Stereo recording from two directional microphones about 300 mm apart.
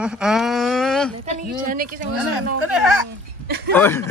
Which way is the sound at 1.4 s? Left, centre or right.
Right.